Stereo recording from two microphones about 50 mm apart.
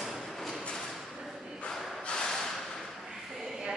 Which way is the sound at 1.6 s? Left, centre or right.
Centre.